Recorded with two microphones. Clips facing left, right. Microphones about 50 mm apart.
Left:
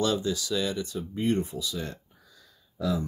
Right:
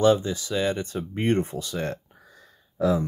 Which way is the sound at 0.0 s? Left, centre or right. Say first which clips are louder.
Right 7 dB; right.